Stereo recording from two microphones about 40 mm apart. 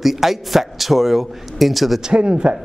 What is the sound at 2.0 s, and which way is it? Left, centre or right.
Speech, right.